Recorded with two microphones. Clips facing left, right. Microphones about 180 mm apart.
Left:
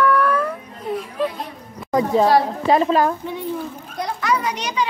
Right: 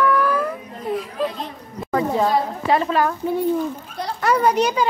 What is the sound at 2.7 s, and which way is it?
Speech, 30° left (ahead or behind).